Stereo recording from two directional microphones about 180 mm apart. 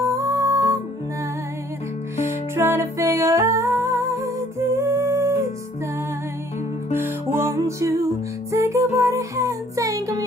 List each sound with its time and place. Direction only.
0.0 s music: 15° right (ahead or behind)
2.2 s music: 15° right (ahead or behind)
6.9 s music: 15° right (ahead or behind)